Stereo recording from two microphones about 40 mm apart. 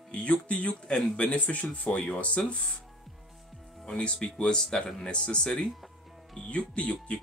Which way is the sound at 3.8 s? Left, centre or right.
Left.